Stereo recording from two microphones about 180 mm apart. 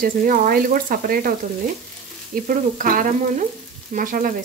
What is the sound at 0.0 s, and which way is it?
Speech, 50° right (ahead or behind).